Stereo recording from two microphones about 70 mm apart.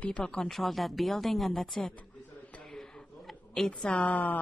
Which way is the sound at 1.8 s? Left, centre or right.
Centre.